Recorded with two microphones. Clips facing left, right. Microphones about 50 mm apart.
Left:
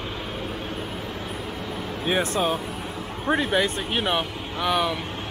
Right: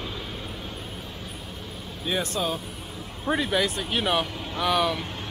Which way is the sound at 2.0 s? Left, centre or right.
Left.